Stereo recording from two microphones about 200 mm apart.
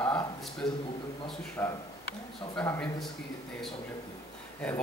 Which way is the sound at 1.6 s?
15° left (ahead or behind).